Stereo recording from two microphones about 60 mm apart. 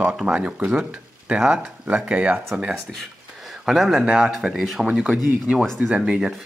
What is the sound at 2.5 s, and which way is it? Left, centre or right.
Speech, centre.